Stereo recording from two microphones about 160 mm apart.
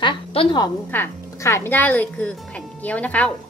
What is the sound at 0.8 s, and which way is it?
Speech, 15° left (ahead or behind).